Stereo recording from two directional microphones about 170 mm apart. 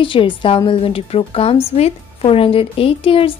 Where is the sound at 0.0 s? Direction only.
30° left (ahead or behind).